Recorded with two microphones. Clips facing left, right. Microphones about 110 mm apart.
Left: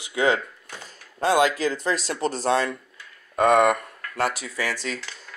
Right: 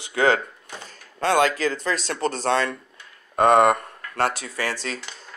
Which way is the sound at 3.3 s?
30° right (ahead or behind).